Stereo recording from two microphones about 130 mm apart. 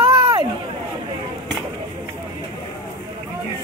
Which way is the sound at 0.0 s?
45° right (ahead or behind).